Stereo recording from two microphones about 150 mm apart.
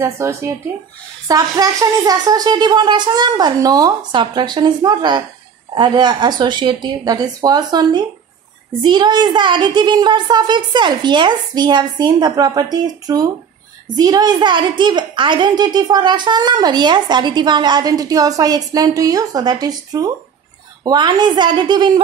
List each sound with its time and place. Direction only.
0.0 s a child's voice: 20° right (ahead or behind)